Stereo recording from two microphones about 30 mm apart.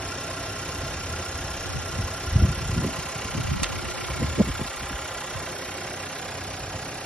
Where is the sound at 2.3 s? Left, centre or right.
Left.